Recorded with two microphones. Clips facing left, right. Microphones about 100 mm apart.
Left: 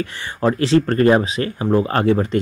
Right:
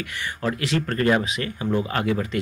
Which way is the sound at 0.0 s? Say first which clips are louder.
Left 7 dB; 30° left (ahead or behind).